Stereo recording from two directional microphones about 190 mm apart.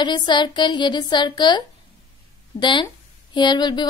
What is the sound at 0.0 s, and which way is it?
A woman's voice, 25° left (ahead or behind).